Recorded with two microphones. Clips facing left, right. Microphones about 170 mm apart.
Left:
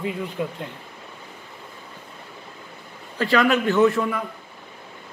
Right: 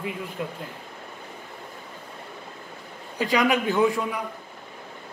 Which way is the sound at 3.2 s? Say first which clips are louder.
Left 3 dB; 15° right (ahead or behind).